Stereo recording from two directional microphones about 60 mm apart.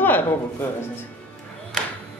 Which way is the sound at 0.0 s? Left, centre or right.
Left.